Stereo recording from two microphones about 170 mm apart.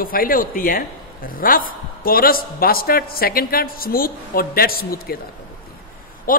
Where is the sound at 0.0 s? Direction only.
60° left (ahead or behind).